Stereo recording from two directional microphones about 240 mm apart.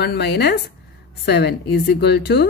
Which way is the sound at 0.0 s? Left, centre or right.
Left.